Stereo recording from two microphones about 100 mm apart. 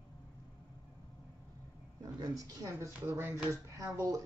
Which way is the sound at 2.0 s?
35° right (ahead or behind).